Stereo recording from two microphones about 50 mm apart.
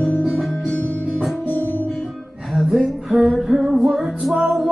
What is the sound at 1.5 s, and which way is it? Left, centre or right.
Music, left.